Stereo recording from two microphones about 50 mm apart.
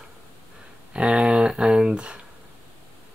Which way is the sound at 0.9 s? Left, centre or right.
Centre.